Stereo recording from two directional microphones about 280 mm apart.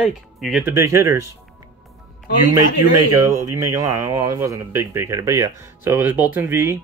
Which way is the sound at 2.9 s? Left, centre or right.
Right.